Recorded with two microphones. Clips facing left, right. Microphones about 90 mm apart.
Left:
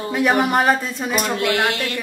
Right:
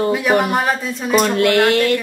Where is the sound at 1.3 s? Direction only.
55° right (ahead or behind).